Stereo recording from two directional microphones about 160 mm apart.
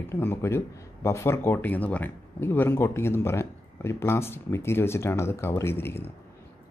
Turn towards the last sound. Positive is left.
turn(degrees=15)  # may be behind; listen again after turning